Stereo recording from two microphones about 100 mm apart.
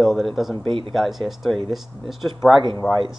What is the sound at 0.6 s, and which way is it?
Speech, 60° right (ahead or behind).